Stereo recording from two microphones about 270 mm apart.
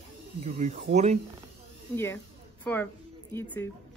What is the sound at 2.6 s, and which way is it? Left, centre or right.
A woman's voice, centre.